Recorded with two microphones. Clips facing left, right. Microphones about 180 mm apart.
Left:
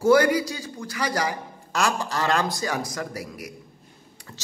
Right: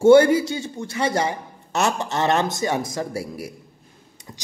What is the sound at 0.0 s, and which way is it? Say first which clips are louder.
A man's voice: right 6 dB; 25° right (ahead or behind).